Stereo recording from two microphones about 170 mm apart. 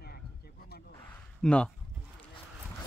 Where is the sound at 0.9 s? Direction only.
10° left (ahead or behind).